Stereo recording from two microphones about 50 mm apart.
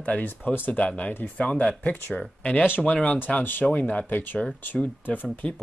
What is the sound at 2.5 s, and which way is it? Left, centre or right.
Speech, left.